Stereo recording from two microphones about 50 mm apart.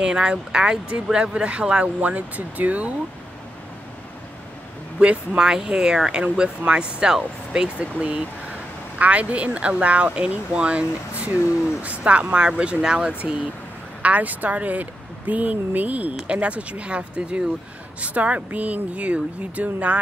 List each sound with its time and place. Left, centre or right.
0.0 s speech: centre
4.9 s speech: right
14.0 s speech: right